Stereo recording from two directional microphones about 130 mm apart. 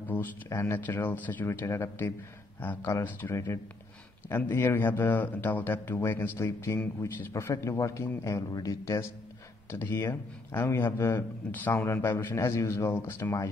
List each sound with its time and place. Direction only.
0.1 s speech: 20° left (ahead or behind)